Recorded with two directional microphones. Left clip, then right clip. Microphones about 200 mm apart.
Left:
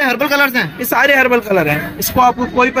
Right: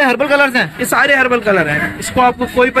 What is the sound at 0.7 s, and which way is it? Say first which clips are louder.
A man's voice: left 1 dB; 30° left (ahead or behind).